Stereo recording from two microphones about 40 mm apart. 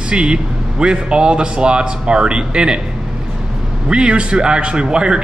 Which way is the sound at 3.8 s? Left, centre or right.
Right.